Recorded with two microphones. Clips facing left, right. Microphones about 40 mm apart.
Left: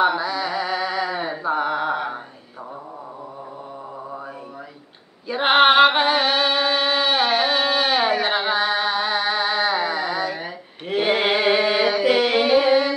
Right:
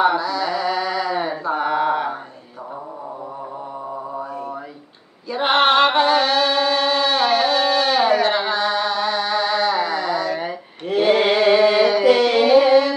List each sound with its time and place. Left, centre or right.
0.2 s a sound: centre
1.5 s mantra: centre
5.3 s music: centre
10.9 s chant: centre